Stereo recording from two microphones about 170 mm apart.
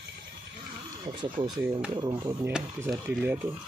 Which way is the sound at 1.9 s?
20° right (ahead or behind).